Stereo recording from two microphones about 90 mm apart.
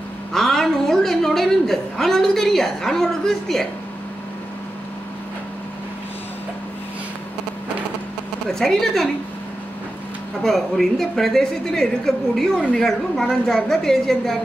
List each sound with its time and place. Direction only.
0.3 s a woman's voice: 5° left (ahead or behind)
8.5 s a woman's voice: 5° left (ahead or behind)
10.4 s a woman's voice: 5° left (ahead or behind)